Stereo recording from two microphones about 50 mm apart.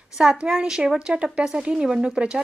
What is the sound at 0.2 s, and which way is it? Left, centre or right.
A woman's voice, centre.